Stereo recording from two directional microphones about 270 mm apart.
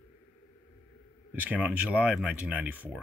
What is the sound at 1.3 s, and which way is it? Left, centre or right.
Speech, centre.